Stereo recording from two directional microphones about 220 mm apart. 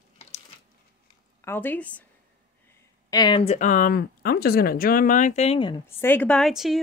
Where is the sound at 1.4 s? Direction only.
10° left (ahead or behind).